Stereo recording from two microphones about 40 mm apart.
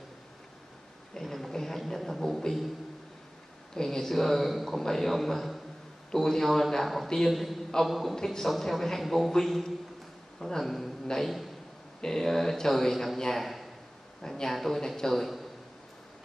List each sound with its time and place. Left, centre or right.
1.1 s a sound: centre
3.7 s a man's voice: centre
8.2 s a man's voice: centre
11.1 s a man's voice: centre
14.2 s a man's voice: centre